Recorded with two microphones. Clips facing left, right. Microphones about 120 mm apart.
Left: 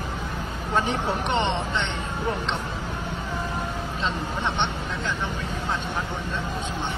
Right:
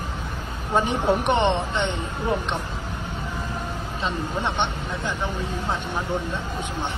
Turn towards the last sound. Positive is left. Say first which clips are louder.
# even
turn(degrees=-15)  # may be behind; listen again after turning